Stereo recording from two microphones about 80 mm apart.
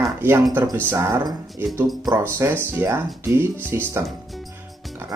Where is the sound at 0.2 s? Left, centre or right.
Right.